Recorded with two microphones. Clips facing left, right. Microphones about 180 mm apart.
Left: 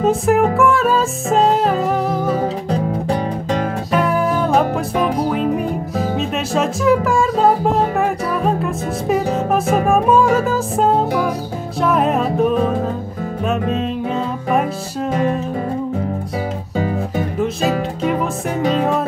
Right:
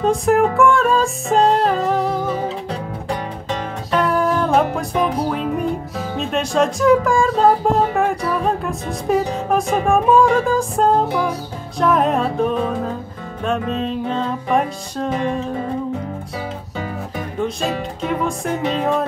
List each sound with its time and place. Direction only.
0.0 s speech: 5° left (ahead or behind)
2.4 s music: 40° left (ahead or behind)
3.9 s music: 5° left (ahead or behind)
6.1 s speech: 5° left (ahead or behind)
13.7 s music: 5° left (ahead or behind)